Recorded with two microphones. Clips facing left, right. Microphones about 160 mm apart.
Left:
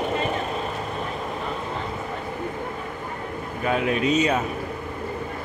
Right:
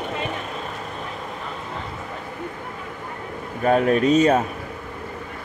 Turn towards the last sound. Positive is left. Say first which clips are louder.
# right 5 dB
turn(degrees=-45)  # may be behind; listen again after turning